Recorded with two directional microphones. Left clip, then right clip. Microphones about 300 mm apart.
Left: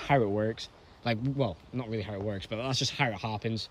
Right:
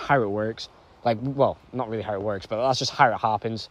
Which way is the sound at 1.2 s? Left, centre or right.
Centre.